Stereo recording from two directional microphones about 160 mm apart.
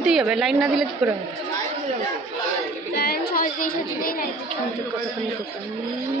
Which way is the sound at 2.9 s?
75° left (ahead or behind).